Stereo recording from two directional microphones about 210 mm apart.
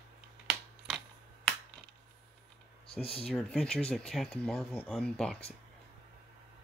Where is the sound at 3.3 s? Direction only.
5° left (ahead or behind).